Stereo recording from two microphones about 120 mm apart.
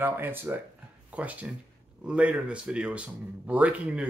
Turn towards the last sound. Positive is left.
turn(degrees=-10)  # may be behind; listen again after turning